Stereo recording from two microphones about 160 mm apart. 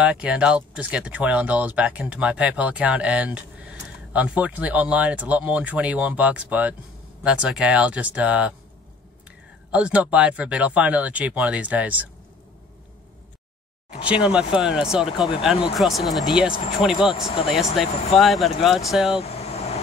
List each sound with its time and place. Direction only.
0.0 s speech: 5° right (ahead or behind)
9.7 s speech: 5° right (ahead or behind)
13.8 s speech: 10° right (ahead or behind)
19.2 s vehicle: 40° left (ahead or behind)